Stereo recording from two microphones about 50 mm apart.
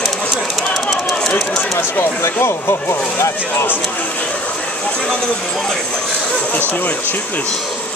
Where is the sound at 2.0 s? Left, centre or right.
Left.